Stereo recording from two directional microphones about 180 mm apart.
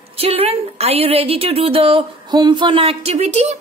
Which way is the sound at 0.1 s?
35° right (ahead or behind).